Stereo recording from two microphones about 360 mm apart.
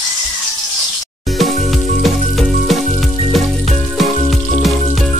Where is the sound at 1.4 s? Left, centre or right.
Centre.